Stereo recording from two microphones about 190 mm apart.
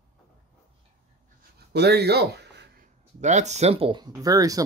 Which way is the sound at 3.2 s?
40° right (ahead or behind).